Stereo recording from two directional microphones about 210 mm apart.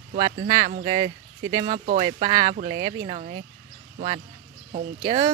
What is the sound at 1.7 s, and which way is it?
Speech, 40° right (ahead or behind).